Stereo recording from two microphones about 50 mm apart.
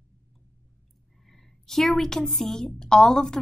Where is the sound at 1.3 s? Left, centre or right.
Centre.